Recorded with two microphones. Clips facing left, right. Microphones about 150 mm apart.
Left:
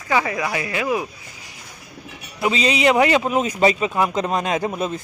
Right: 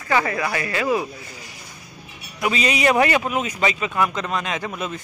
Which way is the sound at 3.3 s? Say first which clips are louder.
Left 5 dB; 35° left (ahead or behind).